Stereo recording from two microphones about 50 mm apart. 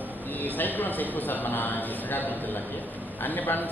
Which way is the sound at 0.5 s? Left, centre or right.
Left.